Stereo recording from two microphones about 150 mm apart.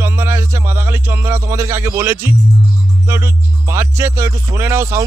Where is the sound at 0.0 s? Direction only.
15° right (ahead or behind).